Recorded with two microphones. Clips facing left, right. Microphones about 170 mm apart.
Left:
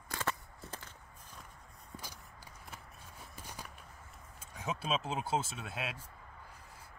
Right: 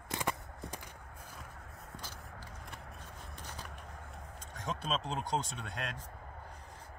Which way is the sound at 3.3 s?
10° left (ahead or behind).